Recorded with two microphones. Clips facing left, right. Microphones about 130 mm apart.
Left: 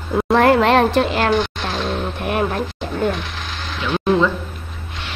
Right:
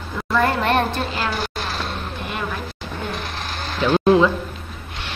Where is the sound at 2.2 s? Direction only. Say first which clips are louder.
Left 9 dB; 55° left (ahead or behind).